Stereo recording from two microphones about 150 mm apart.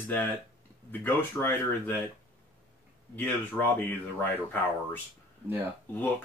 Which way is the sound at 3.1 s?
15° left (ahead or behind).